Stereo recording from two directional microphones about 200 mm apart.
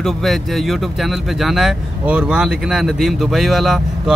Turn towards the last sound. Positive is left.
turn(degrees=0)  # may be behind; listen again after turning